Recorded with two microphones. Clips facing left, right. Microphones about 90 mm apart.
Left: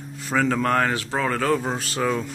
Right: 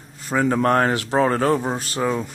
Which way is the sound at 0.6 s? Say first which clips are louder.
Right 3 dB; 35° right (ahead or behind).